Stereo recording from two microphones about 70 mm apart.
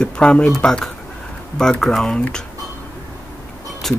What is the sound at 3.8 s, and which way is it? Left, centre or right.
Speech, centre.